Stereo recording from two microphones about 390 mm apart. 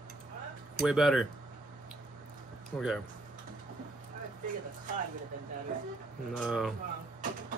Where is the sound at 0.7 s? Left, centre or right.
Centre.